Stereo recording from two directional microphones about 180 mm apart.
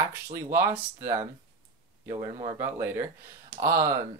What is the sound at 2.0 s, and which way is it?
Speech, 30° right (ahead or behind).